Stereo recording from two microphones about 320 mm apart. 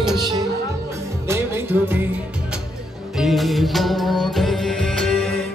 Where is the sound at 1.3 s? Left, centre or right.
Centre.